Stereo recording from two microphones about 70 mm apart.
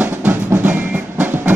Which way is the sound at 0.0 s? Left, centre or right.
Right.